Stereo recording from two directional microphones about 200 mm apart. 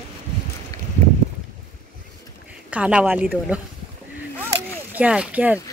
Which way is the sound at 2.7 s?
5° right (ahead or behind).